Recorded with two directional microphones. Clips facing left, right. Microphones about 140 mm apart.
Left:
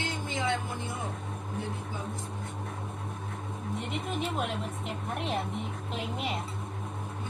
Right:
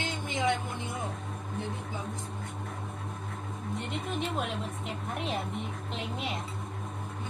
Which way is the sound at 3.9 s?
Centre (ahead or behind).